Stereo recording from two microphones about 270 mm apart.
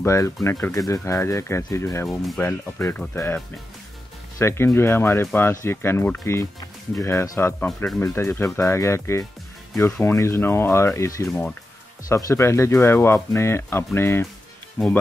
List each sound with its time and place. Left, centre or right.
0.0 s speech: centre